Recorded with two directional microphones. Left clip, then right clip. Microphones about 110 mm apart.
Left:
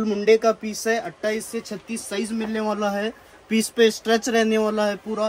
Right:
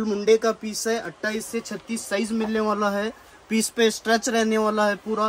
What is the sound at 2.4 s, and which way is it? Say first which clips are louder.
Speech: right 1 dB; 15° right (ahead or behind).